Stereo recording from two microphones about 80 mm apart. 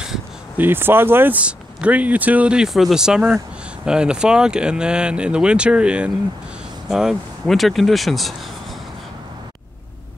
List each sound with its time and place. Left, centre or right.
0.6 s speech: right
1.4 s speech: centre